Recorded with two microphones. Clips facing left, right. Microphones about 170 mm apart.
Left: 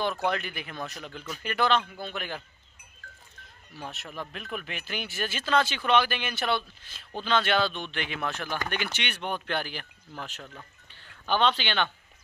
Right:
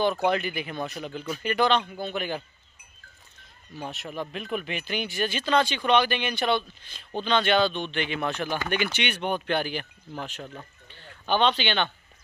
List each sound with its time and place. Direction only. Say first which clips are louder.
0.0 s speech: right 5 dB; centre (ahead or behind)
3.8 s speech: right 5 dB; centre (ahead or behind)
10.4 s speech: right 5 dB; 20° right (ahead or behind)
11.2 s speech: right 2 dB; centre (ahead or behind)